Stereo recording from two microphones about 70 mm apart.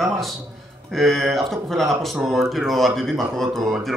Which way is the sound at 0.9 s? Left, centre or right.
Centre.